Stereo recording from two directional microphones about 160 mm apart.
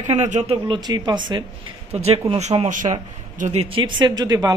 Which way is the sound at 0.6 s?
30° right (ahead or behind).